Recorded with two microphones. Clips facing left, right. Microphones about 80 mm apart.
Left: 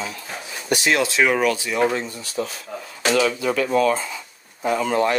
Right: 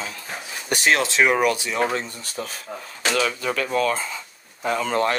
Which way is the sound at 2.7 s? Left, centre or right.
Right.